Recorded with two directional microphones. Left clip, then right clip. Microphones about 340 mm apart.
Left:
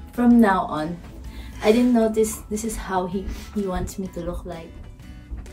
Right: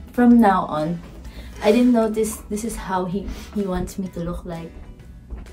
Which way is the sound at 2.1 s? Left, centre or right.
Centre.